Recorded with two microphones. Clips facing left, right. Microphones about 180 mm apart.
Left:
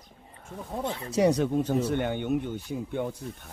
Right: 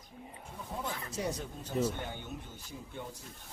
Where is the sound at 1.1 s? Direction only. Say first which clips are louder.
Left 18 dB; 80° left.